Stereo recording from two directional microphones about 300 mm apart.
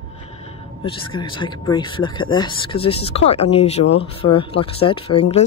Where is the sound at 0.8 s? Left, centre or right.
Centre.